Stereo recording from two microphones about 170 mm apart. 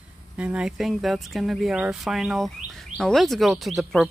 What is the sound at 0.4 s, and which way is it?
Speech, 5° right (ahead or behind).